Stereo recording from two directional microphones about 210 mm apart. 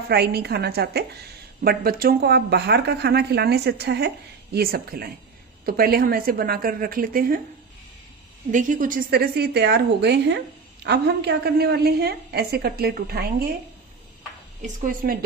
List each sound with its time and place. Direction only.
0.1 s a woman's voice: 50° right (ahead or behind)
8.5 s a woman's voice: 40° right (ahead or behind)
14.8 s speech: 40° right (ahead or behind)